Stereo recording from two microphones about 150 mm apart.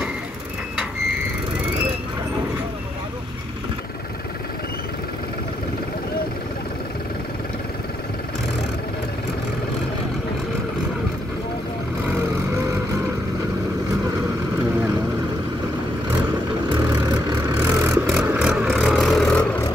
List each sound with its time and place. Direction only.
12.1 s vehicle: 15° right (ahead or behind)
16.6 s vehicle: 30° right (ahead or behind)
17.6 s vehicle: 15° right (ahead or behind); by 19.4 s 5° left (ahead or behind)